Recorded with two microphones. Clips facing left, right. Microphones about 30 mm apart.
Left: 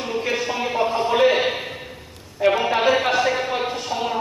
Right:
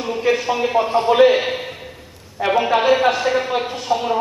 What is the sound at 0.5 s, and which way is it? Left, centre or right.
A man's voice, centre.